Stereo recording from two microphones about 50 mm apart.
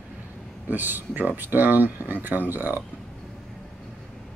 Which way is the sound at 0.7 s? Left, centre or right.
Right.